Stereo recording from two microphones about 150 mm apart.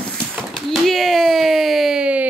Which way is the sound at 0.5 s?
Centre (ahead or behind).